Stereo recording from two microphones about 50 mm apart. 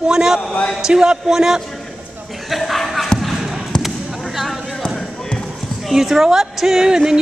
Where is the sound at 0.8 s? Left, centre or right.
Centre.